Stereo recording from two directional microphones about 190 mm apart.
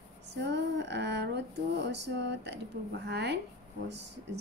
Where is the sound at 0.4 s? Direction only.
65° right (ahead or behind).